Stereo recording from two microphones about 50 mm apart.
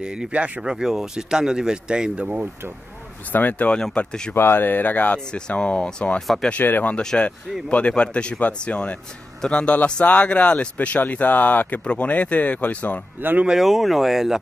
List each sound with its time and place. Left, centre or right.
0.0 s speech: centre
2.2 s speech: right
3.3 s speech: left
3.6 s speech: left
4.4 s speech: left
4.6 s speech: left; by 6.2 s centre
6.6 s speech: left
7.0 s speech: centre; by 13.0 s left
13.2 s speech: right
13.6 s speech: centre